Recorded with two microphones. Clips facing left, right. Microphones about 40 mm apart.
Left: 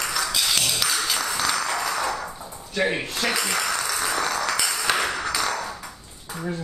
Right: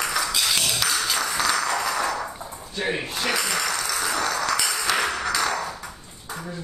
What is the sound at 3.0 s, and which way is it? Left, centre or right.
Speech, right.